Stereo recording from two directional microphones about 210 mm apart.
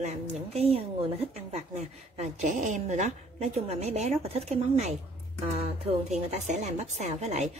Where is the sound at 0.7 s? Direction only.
30° right (ahead or behind).